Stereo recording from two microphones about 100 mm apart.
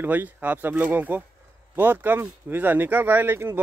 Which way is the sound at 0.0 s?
20° right (ahead or behind).